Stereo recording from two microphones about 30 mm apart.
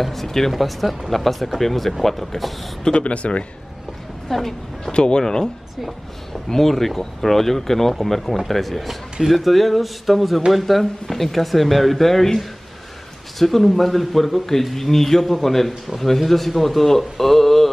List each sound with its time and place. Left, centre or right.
0.0 s speech: centre
3.0 s speech: left
4.3 s speech: centre
4.9 s speech: left
5.2 s speech: left
6.5 s speech: centre
13.4 s speech: centre